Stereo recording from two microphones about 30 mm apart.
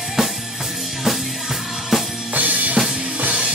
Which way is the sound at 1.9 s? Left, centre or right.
Centre.